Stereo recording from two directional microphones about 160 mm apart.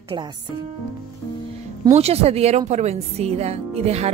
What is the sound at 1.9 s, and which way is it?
Speech, 40° right (ahead or behind).